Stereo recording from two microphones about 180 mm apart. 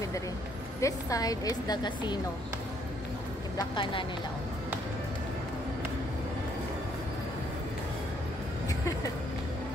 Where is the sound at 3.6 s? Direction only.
25° left (ahead or behind).